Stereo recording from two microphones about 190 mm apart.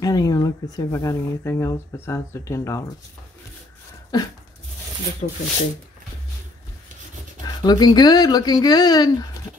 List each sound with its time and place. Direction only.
0.0 s speech: 20° left (ahead or behind)
4.1 s speech: 20° left (ahead or behind)
5.2 s speech: 45° left (ahead or behind)
7.4 s speech: 20° left (ahead or behind)